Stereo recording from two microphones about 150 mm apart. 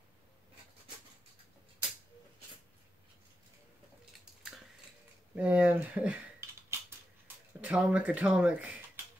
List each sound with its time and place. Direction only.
5.3 s speech: 10° right (ahead or behind)
6.7 s a sound: 15° right (ahead or behind)
7.6 s speech: 10° right (ahead or behind)